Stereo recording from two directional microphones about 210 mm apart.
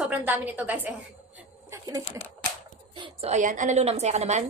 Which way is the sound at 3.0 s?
30° right (ahead or behind).